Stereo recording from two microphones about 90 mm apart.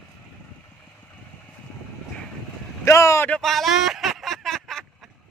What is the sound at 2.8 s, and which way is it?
Vehicle, 35° left (ahead or behind).